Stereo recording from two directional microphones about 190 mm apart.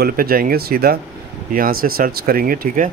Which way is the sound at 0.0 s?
50° right (ahead or behind).